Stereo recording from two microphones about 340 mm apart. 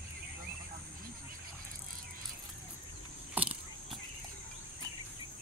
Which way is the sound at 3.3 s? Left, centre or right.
Centre.